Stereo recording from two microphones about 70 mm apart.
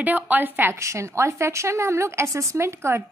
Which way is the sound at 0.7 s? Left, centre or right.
Right.